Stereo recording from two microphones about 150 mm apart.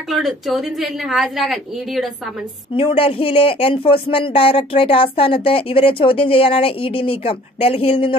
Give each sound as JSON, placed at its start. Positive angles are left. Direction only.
{"t": 0.1, "sound": "a woman's voice", "side_deg": 0}
{"t": 2.7, "sound": "speech", "side_deg": 35}